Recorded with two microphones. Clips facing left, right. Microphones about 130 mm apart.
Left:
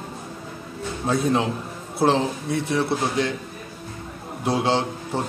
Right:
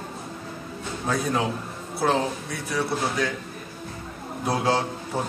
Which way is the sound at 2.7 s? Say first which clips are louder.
Left 1 dB; 25° left (ahead or behind).